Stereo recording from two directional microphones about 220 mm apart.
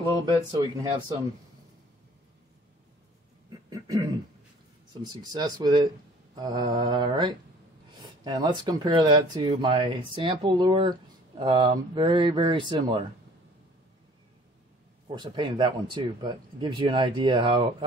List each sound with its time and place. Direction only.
0.1 s speech: 20° right (ahead or behind)
3.8 s speech: 20° right (ahead or behind)
15.1 s speech: 20° right (ahead or behind)